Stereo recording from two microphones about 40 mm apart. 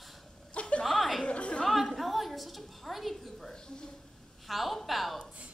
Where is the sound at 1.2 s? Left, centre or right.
Left.